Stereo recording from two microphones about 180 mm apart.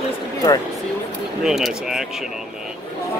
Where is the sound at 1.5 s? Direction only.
Centre (ahead or behind).